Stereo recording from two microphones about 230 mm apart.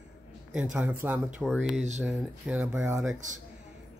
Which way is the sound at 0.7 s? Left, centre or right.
Centre.